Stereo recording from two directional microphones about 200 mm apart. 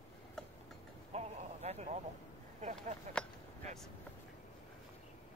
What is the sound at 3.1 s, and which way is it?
Speech, 35° right (ahead or behind).